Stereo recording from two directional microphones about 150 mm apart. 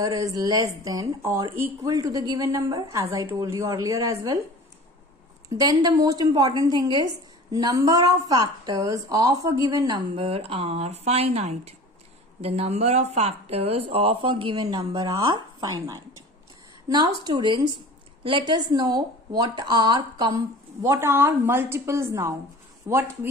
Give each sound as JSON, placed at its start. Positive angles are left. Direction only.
{"t": 0.0, "sound": "a woman's voice", "side_deg": -20}
{"t": 5.5, "sound": "a woman's voice", "side_deg": -25}